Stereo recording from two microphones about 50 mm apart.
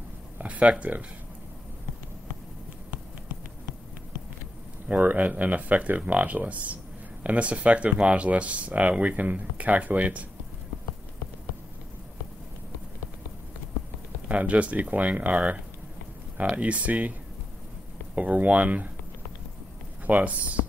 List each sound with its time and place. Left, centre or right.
0.4 s speech: right
5.0 s speech: right
14.2 s speech: right
18.1 s speech: right
20.1 s speech: right